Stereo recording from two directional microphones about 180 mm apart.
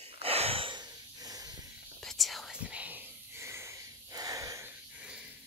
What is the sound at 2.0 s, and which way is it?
Whispering, centre (ahead or behind).